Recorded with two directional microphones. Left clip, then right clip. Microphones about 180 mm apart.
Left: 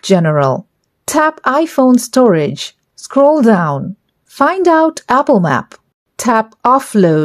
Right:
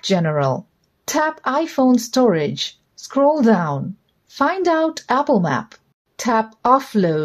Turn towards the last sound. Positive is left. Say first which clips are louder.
# left 5 dB
turn(degrees=40)  # may be behind; listen again after turning